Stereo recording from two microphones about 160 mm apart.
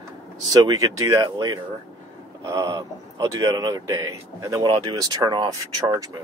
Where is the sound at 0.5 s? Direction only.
25° right (ahead or behind).